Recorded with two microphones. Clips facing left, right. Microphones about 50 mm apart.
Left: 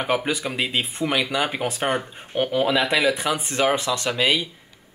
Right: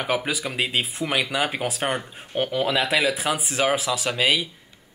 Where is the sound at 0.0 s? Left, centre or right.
Centre.